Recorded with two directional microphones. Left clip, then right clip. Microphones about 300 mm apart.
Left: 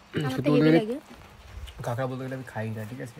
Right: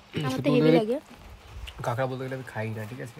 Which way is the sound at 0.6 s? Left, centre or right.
Right.